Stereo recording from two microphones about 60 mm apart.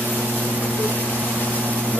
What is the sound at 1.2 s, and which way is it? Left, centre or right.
Vehicle, right.